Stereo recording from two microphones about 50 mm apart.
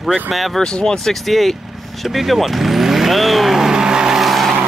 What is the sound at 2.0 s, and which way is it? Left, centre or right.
Vehicle, centre.